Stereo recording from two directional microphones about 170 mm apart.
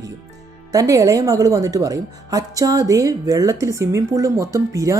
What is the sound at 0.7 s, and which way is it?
A woman's voice, 20° right (ahead or behind).